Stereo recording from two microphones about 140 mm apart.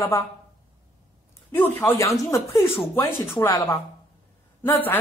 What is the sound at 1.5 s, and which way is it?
A woman's voice, 15° left (ahead or behind).